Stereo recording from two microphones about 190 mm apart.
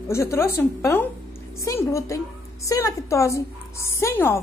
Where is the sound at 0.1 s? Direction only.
15° left (ahead or behind).